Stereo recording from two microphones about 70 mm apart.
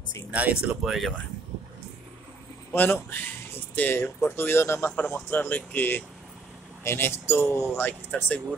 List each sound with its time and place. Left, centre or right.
0.3 s speech: centre
0.8 s speech: centre
2.7 s speech: left